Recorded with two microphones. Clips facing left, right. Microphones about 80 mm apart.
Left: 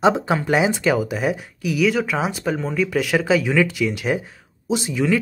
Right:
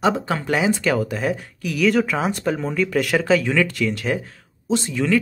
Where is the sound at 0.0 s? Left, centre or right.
Centre.